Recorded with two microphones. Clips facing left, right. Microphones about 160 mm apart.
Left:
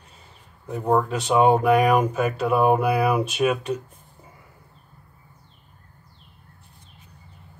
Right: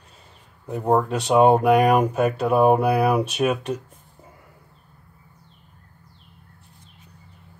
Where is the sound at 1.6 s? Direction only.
Centre (ahead or behind).